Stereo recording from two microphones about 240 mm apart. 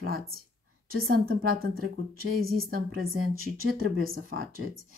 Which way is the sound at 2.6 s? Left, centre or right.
Right.